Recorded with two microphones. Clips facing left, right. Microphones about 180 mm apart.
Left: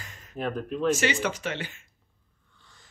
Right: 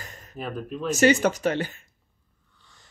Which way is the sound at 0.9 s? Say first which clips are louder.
Right 8 dB; 40° right (ahead or behind).